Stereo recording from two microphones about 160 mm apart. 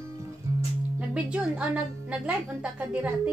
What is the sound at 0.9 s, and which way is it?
Speech, 5° right (ahead or behind).